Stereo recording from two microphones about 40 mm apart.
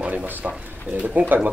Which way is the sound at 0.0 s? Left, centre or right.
Right.